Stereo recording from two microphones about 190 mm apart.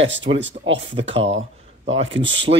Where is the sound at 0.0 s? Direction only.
75° right (ahead or behind).